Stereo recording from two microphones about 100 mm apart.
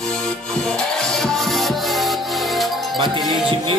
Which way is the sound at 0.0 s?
5° left (ahead or behind).